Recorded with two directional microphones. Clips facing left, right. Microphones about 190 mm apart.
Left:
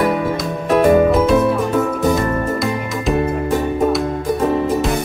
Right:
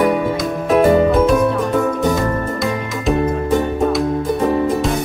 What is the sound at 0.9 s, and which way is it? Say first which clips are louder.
Music: left 3 dB; centre (ahead or behind).